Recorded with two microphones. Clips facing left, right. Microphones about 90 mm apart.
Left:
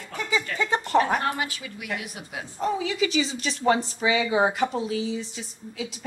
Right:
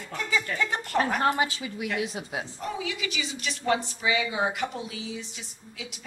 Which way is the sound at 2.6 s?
30° left (ahead or behind).